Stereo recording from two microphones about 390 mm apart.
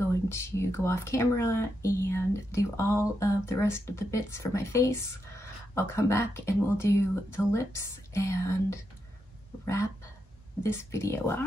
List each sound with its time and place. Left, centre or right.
0.0 s speech: centre
10.6 s speech: centre